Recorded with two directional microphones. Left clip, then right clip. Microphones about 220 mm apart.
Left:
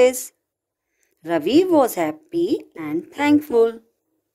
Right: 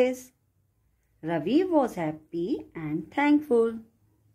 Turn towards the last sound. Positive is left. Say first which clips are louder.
# left 6 dB
turn(degrees=45)  # may be behind; listen again after turning